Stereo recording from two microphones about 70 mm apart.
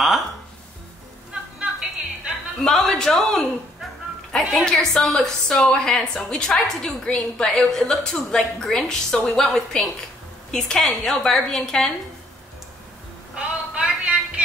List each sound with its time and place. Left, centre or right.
1.3 s music: centre
2.6 s a woman's voice: centre
13.3 s a sound: centre